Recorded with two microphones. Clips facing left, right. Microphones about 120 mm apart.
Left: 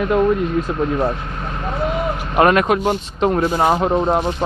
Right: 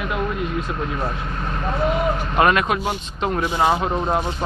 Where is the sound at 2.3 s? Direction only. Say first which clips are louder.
Left 5 dB; 35° left (ahead or behind).